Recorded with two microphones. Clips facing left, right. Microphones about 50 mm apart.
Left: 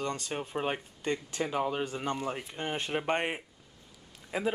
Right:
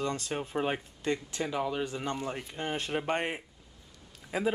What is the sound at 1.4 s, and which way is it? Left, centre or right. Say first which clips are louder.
Speech: left 2 dB; centre.